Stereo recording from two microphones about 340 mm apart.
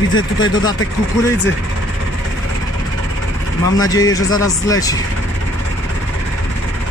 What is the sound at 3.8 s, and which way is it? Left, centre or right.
Speech, centre.